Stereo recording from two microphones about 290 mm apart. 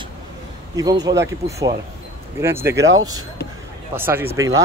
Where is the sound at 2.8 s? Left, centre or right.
Right.